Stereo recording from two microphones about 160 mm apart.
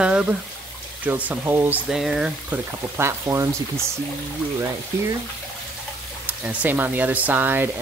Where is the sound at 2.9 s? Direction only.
15° right (ahead or behind).